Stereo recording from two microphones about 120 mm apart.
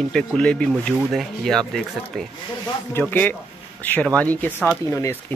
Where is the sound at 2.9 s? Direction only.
15° left (ahead or behind).